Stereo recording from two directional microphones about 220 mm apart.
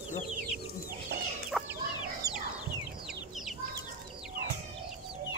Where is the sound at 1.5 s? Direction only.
Centre (ahead or behind).